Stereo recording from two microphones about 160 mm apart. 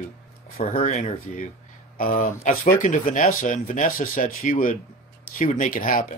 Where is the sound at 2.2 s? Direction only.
50° left (ahead or behind).